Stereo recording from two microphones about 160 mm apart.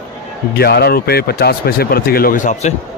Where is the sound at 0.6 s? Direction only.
80° left; by 2.7 s 50° left (ahead or behind).